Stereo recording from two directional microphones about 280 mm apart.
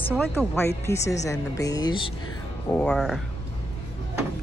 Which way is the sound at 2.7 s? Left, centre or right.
Centre.